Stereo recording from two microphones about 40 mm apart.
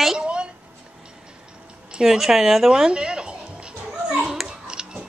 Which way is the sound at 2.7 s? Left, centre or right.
Right.